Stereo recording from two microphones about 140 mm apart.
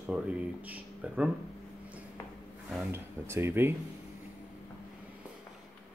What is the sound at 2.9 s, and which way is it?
Speech, 15° right (ahead or behind).